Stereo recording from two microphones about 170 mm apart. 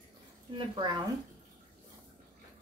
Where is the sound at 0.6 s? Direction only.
30° right (ahead or behind).